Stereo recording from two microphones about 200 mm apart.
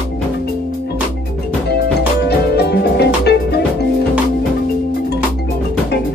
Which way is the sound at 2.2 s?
55° left (ahead or behind).